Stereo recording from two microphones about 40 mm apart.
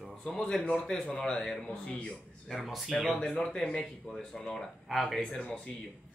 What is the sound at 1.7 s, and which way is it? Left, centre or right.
Speech, left.